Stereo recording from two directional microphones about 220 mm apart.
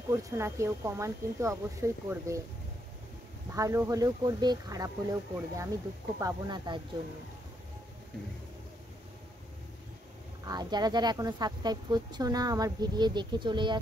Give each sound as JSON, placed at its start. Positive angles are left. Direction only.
{"t": 0.1, "sound": "speech", "side_deg": -10}
{"t": 3.5, "sound": "speech", "side_deg": -15}
{"t": 10.4, "sound": "speech", "side_deg": -20}